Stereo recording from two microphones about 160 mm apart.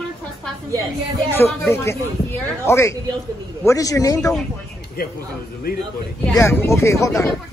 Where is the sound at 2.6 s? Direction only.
15° left (ahead or behind).